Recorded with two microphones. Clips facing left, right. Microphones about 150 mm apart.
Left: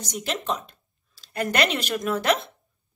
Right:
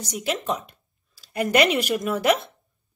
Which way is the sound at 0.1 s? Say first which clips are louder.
Right 2 dB; 10° right (ahead or behind).